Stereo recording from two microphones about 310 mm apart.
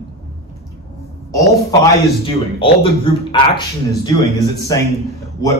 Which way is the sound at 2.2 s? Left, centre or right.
Centre.